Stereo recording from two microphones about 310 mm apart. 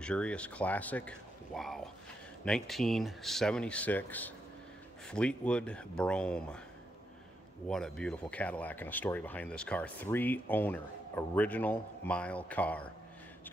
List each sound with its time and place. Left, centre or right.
0.0 s speech: centre
7.6 s speech: centre